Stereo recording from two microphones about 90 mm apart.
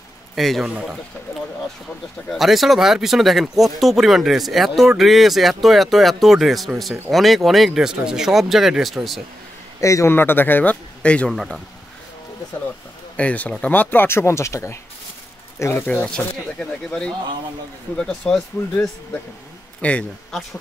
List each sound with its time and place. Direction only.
0.4 s speech: centre (ahead or behind)
0.7 s speech: 10° right (ahead or behind)
2.3 s speech: centre (ahead or behind)
9.8 s a man's voice: 35° left (ahead or behind)
10.1 s speech: 25° left (ahead or behind); by 11.6 s 5° left (ahead or behind)
13.1 s speech: 15° left (ahead or behind)
16.5 s speech: 10° left (ahead or behind)
19.8 s speech: 10° left (ahead or behind)